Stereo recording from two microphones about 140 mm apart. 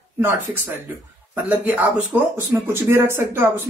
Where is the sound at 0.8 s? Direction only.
10° right (ahead or behind).